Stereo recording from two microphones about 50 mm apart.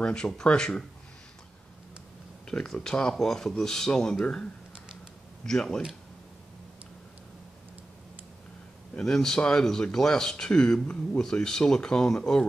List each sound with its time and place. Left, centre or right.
0.0 s speech: centre
2.4 s speech: centre
5.4 s speech: centre
9.0 s speech: centre